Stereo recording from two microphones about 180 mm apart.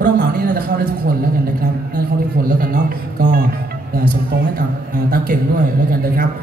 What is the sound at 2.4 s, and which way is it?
Speech, 50° right (ahead or behind).